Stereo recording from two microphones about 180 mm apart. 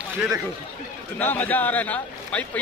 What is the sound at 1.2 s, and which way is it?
A man's voice, 10° left (ahead or behind).